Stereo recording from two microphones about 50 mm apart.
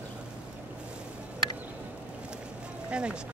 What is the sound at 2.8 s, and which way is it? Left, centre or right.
Music, centre.